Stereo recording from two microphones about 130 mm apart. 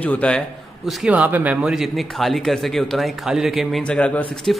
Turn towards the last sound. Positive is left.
turn(degrees=10)  # may be behind; listen again after turning